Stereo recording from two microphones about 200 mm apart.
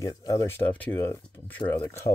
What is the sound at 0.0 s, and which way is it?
Speech, 15° left (ahead or behind).